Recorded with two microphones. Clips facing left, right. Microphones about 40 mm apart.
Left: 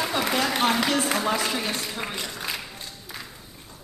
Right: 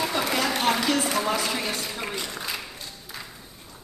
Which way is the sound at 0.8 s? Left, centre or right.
Left.